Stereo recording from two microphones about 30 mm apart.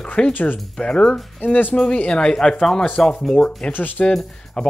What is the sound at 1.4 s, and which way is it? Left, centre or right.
Speech, left.